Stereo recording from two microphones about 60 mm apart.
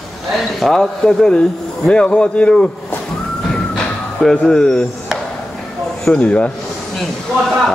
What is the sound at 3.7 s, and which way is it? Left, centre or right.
Music, centre.